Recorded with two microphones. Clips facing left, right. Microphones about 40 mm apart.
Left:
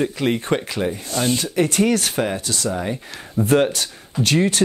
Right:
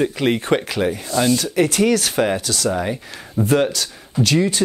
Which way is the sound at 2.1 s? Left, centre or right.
Centre.